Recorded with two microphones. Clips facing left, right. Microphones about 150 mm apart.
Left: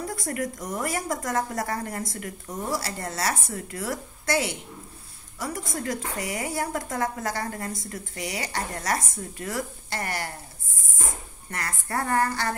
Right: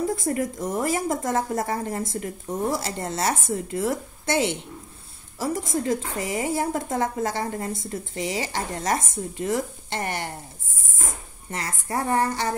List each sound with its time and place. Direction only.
0.1 s a woman's voice: 25° right (ahead or behind)
11.5 s a woman's voice: 20° right (ahead or behind)